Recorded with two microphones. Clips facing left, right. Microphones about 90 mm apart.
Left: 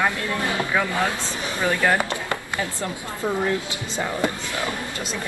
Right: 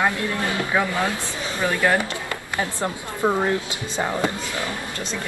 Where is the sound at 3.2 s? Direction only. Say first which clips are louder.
Right 4 dB; 40° right (ahead or behind).